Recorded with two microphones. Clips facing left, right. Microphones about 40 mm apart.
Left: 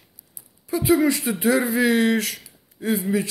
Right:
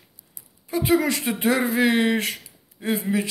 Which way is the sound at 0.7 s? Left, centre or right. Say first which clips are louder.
Left 2 dB; right.